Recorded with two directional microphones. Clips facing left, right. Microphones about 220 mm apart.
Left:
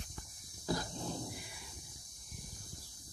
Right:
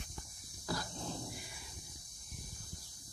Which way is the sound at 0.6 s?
20° left (ahead or behind).